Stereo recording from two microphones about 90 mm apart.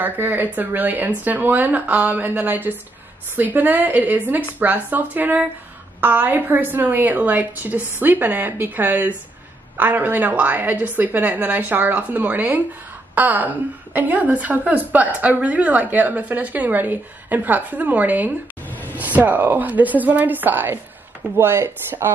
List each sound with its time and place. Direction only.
0.0 s a woman's voice: 20° right (ahead or behind)